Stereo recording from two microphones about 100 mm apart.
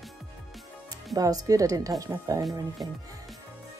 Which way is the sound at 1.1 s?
35° right (ahead or behind).